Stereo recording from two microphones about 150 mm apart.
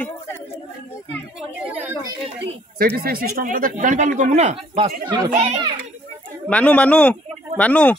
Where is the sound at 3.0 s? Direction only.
85° right; by 4.9 s 40° right (ahead or behind).